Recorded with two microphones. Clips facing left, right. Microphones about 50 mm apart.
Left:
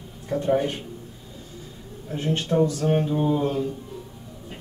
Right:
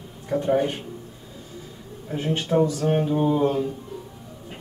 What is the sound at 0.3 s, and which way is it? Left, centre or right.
Speech, centre.